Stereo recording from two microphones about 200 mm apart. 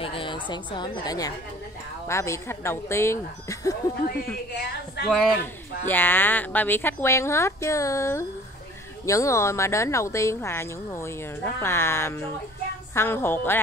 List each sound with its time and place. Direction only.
0.0 s a woman's voice: 25° left (ahead or behind)
5.0 s speech: 5° left (ahead or behind)